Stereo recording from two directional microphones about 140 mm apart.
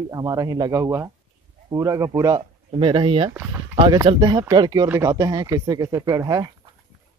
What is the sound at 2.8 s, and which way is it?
Speech, 40° right (ahead or behind).